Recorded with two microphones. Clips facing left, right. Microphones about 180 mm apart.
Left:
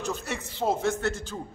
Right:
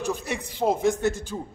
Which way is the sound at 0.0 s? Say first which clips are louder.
Right 3 dB; 15° right (ahead or behind).